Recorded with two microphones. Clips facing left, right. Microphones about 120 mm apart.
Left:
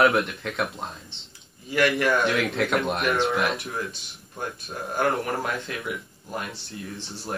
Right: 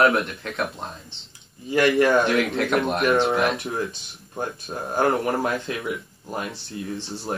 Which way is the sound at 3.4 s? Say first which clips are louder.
Right 4 dB; 25° right (ahead or behind).